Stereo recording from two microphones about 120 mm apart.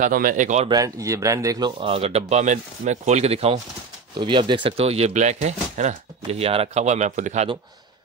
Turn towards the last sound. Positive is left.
turn(degrees=-85)